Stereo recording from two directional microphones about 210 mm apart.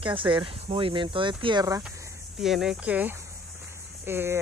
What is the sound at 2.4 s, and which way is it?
Speech, centre (ahead or behind).